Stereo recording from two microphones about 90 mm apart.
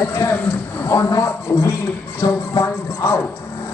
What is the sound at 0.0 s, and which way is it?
Speech, 30° left (ahead or behind).